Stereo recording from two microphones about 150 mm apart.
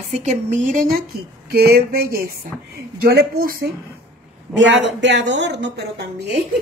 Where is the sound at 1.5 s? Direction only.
90° right; by 3.7 s 75° right (ahead or behind).